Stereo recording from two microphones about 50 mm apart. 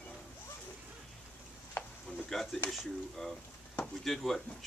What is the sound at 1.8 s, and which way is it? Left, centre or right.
Sizzle, left.